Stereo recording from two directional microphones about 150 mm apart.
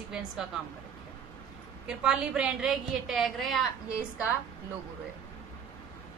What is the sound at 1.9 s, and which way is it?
A woman's voice, 5° right (ahead or behind).